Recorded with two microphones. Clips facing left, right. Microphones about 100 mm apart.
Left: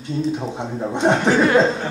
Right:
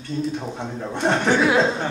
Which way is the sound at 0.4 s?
15° left (ahead or behind).